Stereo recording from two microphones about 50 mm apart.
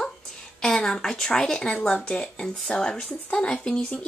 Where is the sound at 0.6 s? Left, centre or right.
Centre.